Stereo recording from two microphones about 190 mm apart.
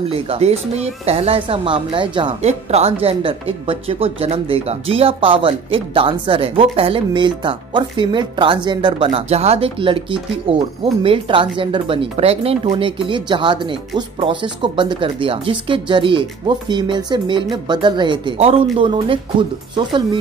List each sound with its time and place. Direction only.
0.1 s speech: 30° right (ahead or behind)